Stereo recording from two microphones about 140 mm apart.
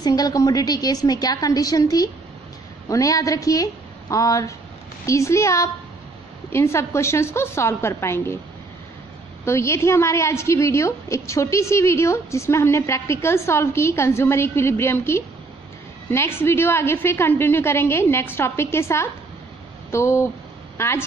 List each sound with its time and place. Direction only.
0.0 s a woman's voice: 30° left (ahead or behind)
9.4 s a woman's voice: 20° left (ahead or behind)